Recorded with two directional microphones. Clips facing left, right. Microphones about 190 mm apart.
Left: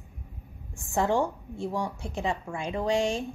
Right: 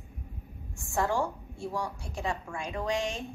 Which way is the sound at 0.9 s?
20° left (ahead or behind).